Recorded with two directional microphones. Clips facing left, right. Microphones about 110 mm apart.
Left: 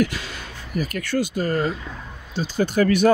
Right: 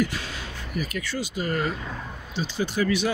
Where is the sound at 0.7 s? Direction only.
50° left (ahead or behind).